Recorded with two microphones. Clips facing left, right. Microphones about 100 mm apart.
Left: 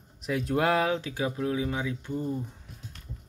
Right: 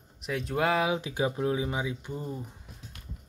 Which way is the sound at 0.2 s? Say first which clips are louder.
Left 2 dB; centre (ahead or behind).